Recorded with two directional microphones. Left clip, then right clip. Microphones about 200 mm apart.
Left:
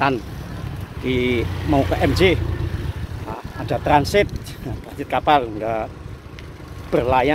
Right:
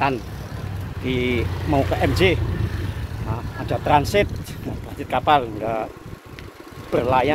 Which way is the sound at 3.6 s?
10° left (ahead or behind).